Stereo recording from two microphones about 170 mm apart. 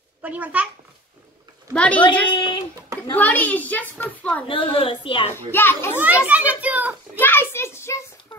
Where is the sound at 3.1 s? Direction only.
10° left (ahead or behind).